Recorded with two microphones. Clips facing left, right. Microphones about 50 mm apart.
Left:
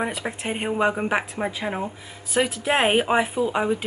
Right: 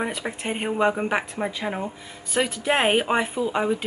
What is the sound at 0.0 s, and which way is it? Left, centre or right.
Speech, centre.